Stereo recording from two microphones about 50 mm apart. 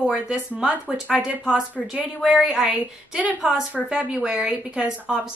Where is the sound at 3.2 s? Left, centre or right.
Right.